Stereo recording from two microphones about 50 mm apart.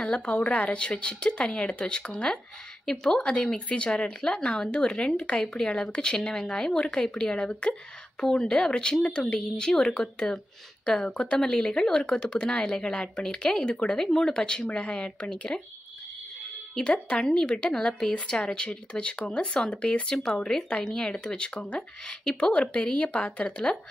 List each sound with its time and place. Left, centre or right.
0.0 s a woman's voice: centre
14.0 s speech: centre
14.3 s a woman's voice: centre
16.7 s a woman's voice: left